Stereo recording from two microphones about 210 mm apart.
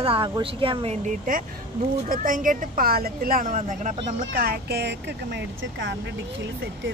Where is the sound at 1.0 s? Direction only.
40° right (ahead or behind).